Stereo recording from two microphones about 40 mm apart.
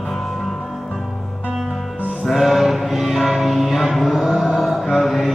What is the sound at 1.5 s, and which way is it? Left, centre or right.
Music, centre.